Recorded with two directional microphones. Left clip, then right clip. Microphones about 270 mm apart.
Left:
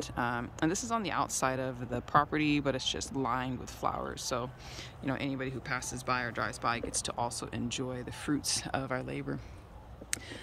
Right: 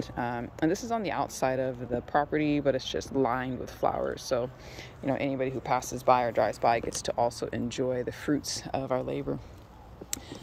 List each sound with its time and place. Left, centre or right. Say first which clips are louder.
0.0 s speech: right 1 dB; centre